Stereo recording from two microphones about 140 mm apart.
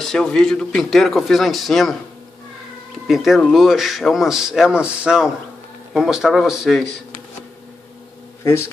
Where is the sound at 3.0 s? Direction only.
Centre (ahead or behind).